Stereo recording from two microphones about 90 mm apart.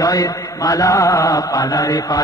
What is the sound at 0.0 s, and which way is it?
A man's voice, 40° left (ahead or behind).